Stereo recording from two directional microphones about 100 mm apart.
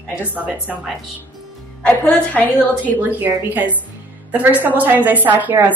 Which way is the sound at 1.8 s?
15° left (ahead or behind).